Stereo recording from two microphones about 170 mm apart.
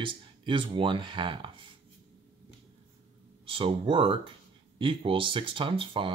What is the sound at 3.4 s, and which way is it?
Speech, 30° right (ahead or behind).